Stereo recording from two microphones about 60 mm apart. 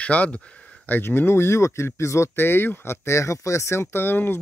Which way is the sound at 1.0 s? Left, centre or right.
Left.